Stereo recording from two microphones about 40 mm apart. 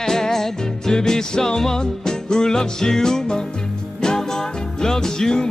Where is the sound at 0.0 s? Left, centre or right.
Centre.